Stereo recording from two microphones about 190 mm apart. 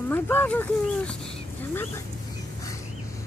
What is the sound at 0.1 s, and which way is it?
Speech, 10° left (ahead or behind).